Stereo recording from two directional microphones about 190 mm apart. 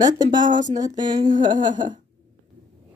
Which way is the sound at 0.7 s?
20° right (ahead or behind).